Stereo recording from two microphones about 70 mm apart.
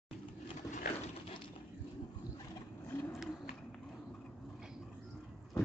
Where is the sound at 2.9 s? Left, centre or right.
Left.